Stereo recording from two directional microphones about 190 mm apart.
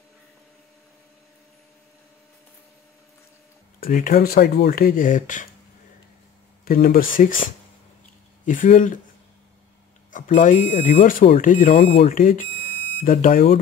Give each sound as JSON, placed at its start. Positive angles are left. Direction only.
{"t": 3.8, "sound": "speech", "side_deg": 50}
{"t": 6.6, "sound": "speech", "side_deg": 50}
{"t": 8.5, "sound": "speech", "side_deg": 45}
{"t": 10.1, "sound": "speech", "side_deg": 45}